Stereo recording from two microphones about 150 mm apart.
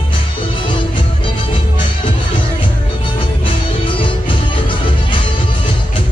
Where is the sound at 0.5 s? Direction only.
35° left (ahead or behind).